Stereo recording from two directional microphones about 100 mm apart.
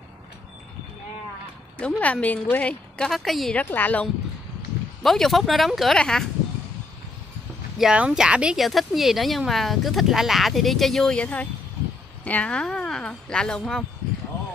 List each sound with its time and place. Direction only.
1.8 s a woman's voice: 15° left (ahead or behind)
3.5 s a woman's voice: 15° left (ahead or behind)
5.0 s speech: 5° left (ahead or behind)
7.8 s a woman's voice: 10° right (ahead or behind); by 13.8 s 5° left (ahead or behind)